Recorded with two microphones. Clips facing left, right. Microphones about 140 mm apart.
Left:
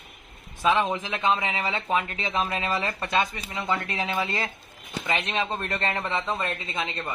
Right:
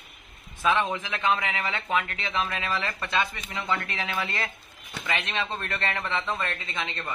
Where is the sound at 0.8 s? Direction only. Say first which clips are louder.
Left 2 dB; 15° left (ahead or behind).